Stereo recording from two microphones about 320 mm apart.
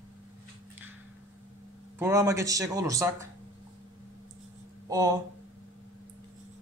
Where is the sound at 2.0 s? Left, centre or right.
Centre.